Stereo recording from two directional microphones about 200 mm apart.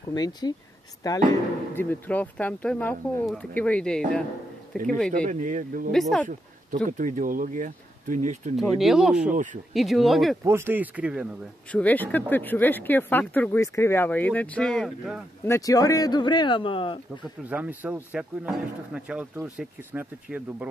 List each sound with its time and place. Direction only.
0.1 s speech: 20° left (ahead or behind)
1.8 s speech: 10° left (ahead or behind)
5.1 s speech: 40° right (ahead or behind)
5.9 s speech: centre (ahead or behind)
6.9 s speech: 40° right (ahead or behind)
8.5 s speech: centre (ahead or behind)
9.3 s speech: 40° right (ahead or behind)
9.8 s speech: centre (ahead or behind)
10.4 s speech: 10° right (ahead or behind)
11.7 s speech: 10° left (ahead or behind)
15.4 s speech: 15° left (ahead or behind)
17.5 s speech: 5° right (ahead or behind)